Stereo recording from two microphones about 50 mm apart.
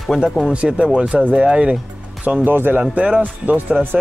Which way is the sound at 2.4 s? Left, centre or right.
Right.